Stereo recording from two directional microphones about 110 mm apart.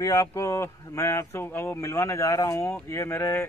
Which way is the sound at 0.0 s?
30° left (ahead or behind).